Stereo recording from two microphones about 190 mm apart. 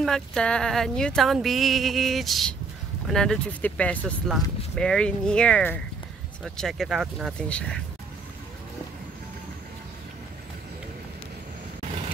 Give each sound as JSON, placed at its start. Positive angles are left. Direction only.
{"t": 0.0, "sound": "speech", "side_deg": 5}